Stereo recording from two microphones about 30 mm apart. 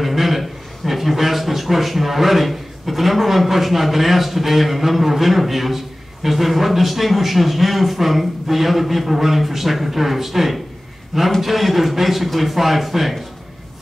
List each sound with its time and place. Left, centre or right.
0.0 s a man's voice: centre